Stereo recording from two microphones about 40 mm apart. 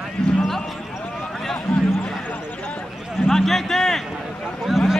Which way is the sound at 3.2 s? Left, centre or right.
Centre.